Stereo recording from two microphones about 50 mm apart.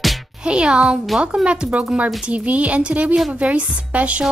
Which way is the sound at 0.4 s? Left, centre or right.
Centre.